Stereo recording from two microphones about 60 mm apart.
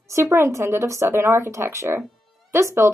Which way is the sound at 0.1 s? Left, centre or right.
Right.